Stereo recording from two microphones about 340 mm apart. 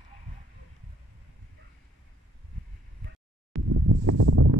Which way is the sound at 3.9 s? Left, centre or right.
Right.